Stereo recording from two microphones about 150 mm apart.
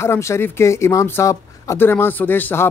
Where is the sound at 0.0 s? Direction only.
20° left (ahead or behind).